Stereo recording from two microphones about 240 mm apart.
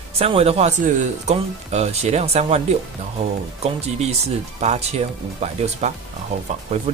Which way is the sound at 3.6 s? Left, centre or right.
Right.